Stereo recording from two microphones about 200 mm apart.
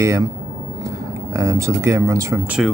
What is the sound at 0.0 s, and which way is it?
Speech, 15° right (ahead or behind).